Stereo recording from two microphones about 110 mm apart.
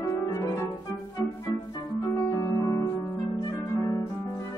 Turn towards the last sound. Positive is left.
turn(degrees=35)  # may be behind; listen again after turning